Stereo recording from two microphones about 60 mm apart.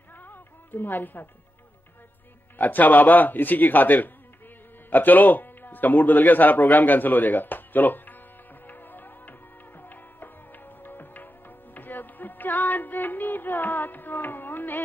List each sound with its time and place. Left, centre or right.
0.2 s music: left
2.6 s a man's voice: left
8.6 s music: left